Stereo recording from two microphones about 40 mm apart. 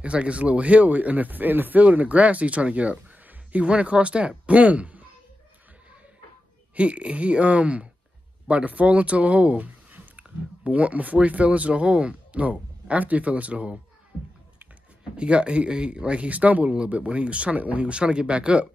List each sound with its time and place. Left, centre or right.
0.0 s speech: right
2.0 s speech: right
6.7 s speech: right
15.1 s speech: right